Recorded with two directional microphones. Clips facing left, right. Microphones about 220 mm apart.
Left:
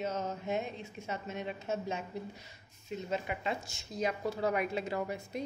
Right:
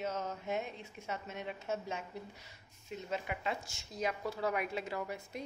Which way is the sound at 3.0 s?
25° left (ahead or behind).